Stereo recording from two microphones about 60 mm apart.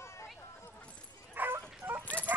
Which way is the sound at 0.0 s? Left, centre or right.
Left.